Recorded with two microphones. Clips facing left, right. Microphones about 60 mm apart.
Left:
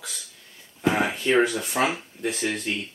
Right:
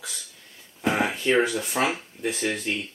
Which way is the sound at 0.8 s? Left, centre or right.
Centre.